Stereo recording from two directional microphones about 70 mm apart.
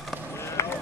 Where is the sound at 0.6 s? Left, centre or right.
Left.